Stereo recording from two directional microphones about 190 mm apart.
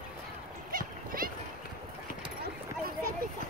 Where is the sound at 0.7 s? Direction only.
50° right (ahead or behind).